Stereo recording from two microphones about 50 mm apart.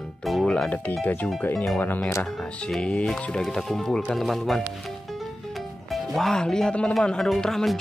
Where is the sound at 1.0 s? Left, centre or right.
Left.